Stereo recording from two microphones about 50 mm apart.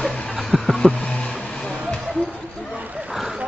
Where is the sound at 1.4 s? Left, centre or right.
Left.